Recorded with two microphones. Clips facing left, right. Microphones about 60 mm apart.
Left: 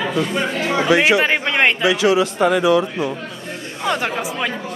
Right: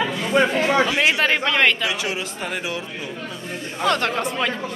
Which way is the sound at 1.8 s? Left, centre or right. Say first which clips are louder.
Left 10 dB; left.